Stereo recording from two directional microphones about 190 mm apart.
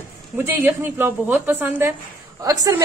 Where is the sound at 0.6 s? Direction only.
10° right (ahead or behind).